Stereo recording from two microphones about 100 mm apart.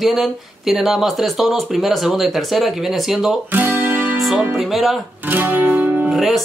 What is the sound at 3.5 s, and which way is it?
Music, 20° right (ahead or behind).